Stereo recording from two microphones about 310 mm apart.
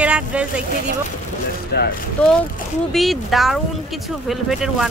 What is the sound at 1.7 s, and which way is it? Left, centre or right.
Speech, left.